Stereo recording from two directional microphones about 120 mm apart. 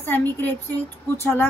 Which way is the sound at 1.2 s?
20° left (ahead or behind).